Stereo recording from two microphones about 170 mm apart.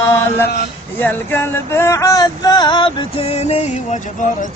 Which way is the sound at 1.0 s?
10° left (ahead or behind).